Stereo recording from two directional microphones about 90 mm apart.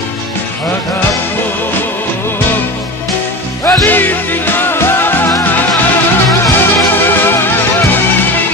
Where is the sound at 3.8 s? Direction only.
20° left (ahead or behind).